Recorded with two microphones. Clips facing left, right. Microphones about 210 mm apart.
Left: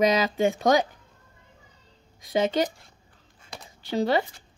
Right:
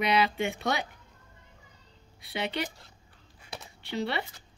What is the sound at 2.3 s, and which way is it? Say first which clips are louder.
Speech: left 9 dB; 40° left (ahead or behind).